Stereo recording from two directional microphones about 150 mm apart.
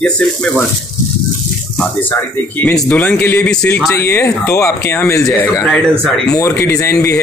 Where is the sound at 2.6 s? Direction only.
10° left (ahead or behind).